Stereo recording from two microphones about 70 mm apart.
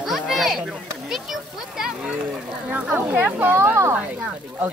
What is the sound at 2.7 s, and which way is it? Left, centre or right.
Speech, right.